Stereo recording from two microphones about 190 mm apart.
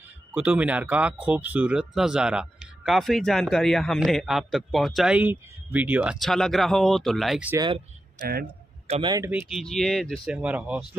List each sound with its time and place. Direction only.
0.3 s speech: 10° right (ahead or behind)
7.5 s speech: 25° right (ahead or behind)
8.2 s speech: 50° right (ahead or behind)
8.8 s a man's voice: 35° right (ahead or behind)
9.3 s speech: 5° right (ahead or behind)